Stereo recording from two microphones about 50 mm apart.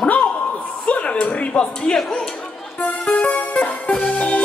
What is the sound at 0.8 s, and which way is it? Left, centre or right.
Music, left.